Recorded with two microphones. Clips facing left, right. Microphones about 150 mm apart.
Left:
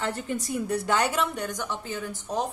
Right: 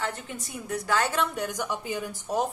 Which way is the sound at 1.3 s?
10° right (ahead or behind).